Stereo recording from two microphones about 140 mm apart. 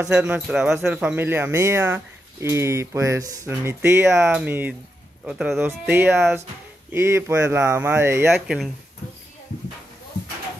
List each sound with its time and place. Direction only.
0.1 s speech: 5° right (ahead or behind)